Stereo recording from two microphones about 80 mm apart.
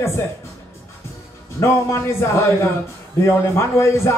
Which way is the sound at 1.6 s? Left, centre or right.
Left.